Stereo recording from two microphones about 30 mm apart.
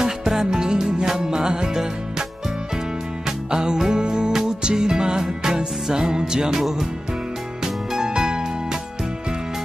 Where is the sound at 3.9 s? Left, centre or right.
Right.